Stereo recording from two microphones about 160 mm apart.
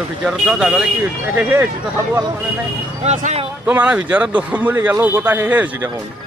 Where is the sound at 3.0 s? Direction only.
45° right (ahead or behind).